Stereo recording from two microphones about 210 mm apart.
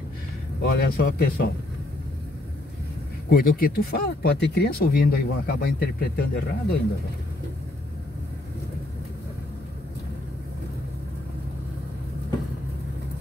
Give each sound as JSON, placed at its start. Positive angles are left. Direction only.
{"t": 0.6, "sound": "speech", "side_deg": 50}
{"t": 3.3, "sound": "speech", "side_deg": 45}